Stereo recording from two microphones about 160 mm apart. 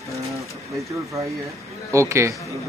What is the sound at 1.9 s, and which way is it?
Speech, 15° right (ahead or behind).